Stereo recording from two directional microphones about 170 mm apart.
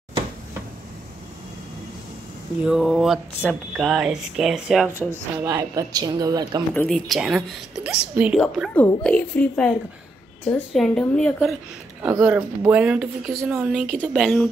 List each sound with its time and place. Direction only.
2.6 s speech: centre (ahead or behind); by 6.6 s 20° right (ahead or behind)
6.7 s speech: 5° left (ahead or behind)
9.0 s a woman's voice: 10° left (ahead or behind)
12.0 s speech: 10° right (ahead or behind)